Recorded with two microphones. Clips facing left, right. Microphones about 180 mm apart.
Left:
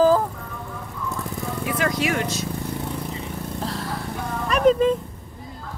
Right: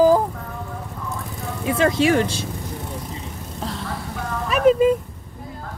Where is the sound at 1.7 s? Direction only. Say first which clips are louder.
Right 7 dB; 25° right (ahead or behind).